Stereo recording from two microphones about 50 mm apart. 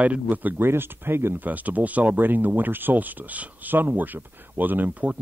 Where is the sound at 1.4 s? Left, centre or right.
Right.